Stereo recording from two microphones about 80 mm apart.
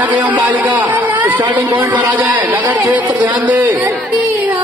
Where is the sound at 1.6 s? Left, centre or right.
Right.